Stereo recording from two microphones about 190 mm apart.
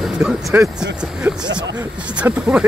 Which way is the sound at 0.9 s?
5° right (ahead or behind).